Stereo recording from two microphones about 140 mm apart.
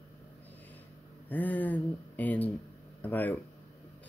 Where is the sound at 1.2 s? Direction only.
10° left (ahead or behind).